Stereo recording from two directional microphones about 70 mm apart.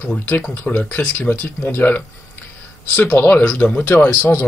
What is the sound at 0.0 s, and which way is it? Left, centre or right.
Speech, left.